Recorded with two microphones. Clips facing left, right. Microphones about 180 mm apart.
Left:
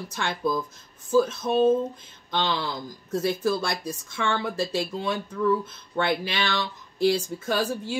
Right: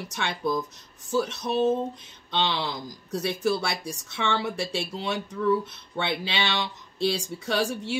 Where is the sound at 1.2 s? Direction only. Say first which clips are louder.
Left 5 dB; 75° right (ahead or behind).